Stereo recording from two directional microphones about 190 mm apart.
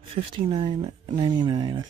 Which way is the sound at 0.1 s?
25° right (ahead or behind).